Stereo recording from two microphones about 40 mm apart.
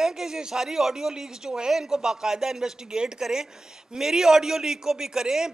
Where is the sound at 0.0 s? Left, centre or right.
Centre.